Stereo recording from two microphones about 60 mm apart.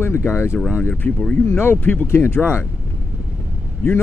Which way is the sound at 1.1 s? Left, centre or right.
Left.